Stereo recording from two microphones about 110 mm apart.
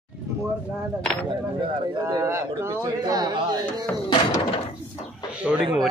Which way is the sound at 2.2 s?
25° right (ahead or behind).